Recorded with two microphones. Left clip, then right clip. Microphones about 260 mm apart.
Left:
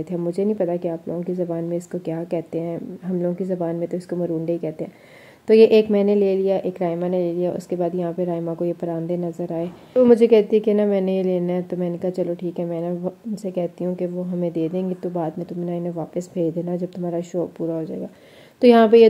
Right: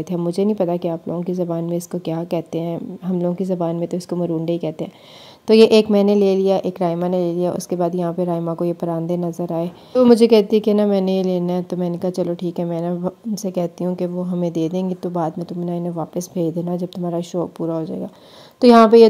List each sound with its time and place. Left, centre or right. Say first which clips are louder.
0.1 s a woman's voice: right 3 dB; right